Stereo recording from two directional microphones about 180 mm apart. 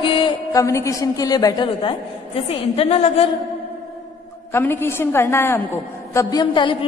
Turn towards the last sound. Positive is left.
turn(degrees=30)  # may be behind; listen again after turning